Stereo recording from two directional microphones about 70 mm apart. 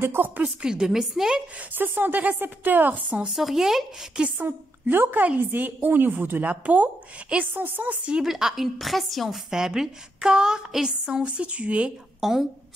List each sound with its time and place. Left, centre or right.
0.0 s a woman's voice: right
0.4 s a woman's voice: centre
1.8 s a woman's voice: right
3.3 s speech: centre
4.2 s a woman's voice: right
8.3 s a woman's voice: centre
12.2 s a woman's voice: centre